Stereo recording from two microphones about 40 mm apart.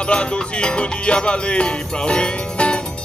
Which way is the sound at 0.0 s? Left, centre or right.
Left.